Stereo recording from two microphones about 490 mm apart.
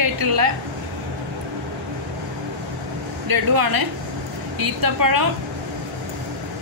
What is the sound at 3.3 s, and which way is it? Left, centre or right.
A woman's voice, right.